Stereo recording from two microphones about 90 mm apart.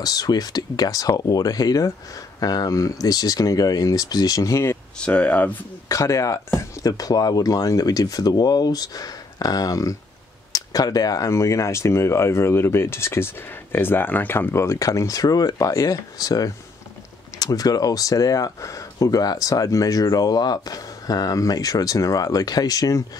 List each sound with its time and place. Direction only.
0.0 s speech: 45° left (ahead or behind)
4.9 s speech: 15° left (ahead or behind)
5.9 s speech: 35° left (ahead or behind)